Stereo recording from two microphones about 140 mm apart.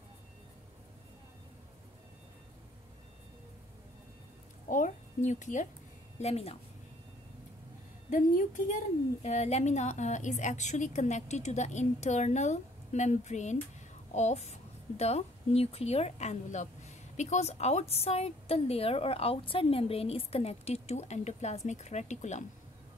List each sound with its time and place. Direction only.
4.6 s speech: 65° left (ahead or behind)
6.1 s speech: 50° left (ahead or behind)
8.1 s a woman's voice: 70° left (ahead or behind)
9.2 s a woman's voice: 50° left (ahead or behind)